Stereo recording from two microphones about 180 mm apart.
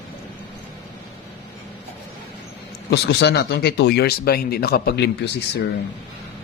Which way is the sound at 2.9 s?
65° left (ahead or behind).